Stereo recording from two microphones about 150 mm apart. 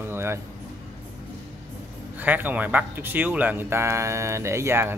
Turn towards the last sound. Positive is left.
turn(degrees=-15)  # may be behind; listen again after turning